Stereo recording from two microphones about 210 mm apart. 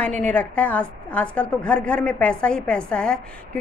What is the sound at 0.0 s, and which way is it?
A woman's voice, 5° left (ahead or behind).